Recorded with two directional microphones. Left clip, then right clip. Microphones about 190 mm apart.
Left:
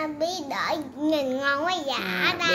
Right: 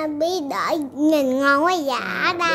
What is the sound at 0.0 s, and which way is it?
A child's voice, 65° right (ahead or behind).